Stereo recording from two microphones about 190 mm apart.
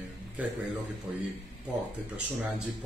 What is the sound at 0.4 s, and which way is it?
Speech, 10° right (ahead or behind).